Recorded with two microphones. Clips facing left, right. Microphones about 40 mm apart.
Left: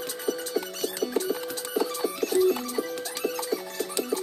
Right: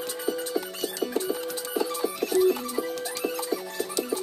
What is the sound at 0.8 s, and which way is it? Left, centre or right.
Music, right.